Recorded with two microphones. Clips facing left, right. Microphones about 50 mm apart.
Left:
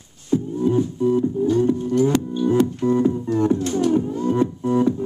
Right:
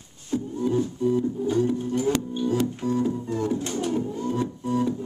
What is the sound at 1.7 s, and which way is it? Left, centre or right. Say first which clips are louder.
Music: left 7 dB; centre.